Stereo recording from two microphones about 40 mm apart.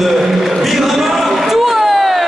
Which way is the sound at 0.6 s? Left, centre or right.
Centre.